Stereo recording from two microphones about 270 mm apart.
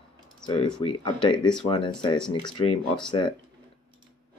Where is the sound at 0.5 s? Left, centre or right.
Centre.